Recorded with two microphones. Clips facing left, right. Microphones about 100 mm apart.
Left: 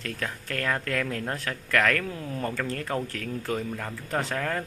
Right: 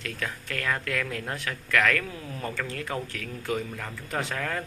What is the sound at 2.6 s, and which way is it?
Speech, 40° left (ahead or behind).